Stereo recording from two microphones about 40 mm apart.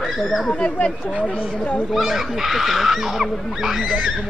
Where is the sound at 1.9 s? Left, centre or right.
Centre.